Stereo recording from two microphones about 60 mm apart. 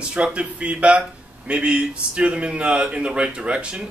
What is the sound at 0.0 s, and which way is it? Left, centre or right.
A man's voice, centre.